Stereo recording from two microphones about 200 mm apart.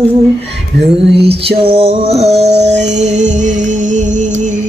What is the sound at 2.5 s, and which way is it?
Music, 60° right (ahead or behind).